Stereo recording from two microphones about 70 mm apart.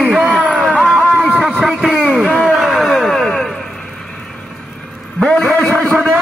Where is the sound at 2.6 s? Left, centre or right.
Centre.